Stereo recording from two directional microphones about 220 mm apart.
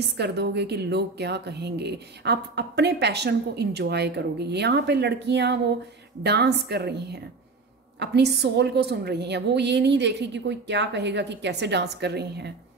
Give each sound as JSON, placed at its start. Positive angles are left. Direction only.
{"t": 0.2, "sound": "speech", "side_deg": -50}